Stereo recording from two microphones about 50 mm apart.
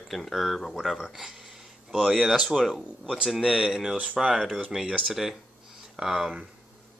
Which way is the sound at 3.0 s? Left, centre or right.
Centre.